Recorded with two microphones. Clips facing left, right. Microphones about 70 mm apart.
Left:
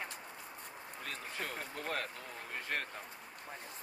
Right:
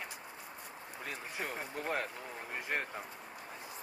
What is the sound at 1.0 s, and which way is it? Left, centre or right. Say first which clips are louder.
Speech: right 2 dB; centre.